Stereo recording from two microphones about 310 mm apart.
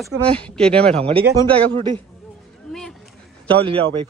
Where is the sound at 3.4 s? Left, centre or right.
Centre.